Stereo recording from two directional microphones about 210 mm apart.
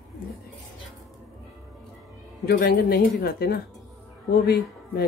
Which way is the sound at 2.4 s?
45° left (ahead or behind).